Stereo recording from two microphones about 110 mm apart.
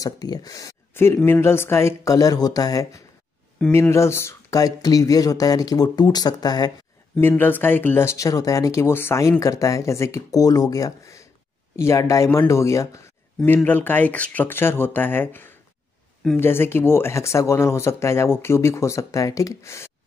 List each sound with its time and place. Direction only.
0.0 s speech: 35° left (ahead or behind)
3.6 s speech: 5° left (ahead or behind)
3.9 s speech: 25° left (ahead or behind)
7.2 s speech: 20° left (ahead or behind)
13.7 s speech: 15° left (ahead or behind)